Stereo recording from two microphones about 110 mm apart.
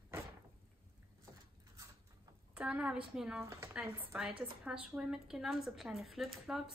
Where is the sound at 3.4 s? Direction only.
30° right (ahead or behind).